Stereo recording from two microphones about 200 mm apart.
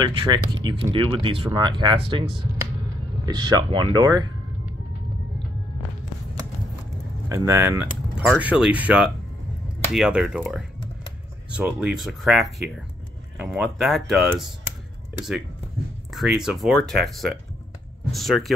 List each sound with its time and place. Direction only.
0.0 s speech: 20° right (ahead or behind)
7.2 s speech: 15° right (ahead or behind)
16.1 s speech: centre (ahead or behind)